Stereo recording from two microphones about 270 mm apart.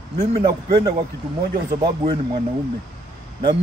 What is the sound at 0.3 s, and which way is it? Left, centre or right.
Speech, centre.